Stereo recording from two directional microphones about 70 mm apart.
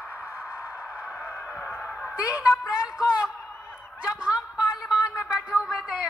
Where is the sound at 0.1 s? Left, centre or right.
Left.